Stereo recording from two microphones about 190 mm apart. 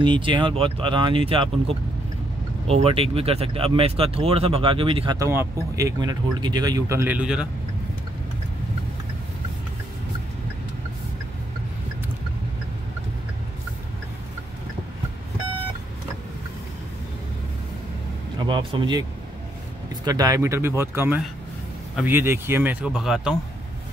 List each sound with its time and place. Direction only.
0.0 s speech: 25° right (ahead or behind); by 7.4 s 5° right (ahead or behind)
18.5 s speech: 25° right (ahead or behind)
20.1 s speech: 20° right (ahead or behind); by 23.3 s centre (ahead or behind)